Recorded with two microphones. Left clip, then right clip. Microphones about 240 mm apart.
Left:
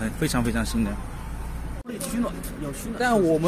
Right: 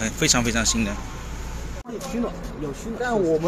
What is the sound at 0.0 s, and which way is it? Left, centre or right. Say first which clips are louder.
Speech: right 5 dB; centre.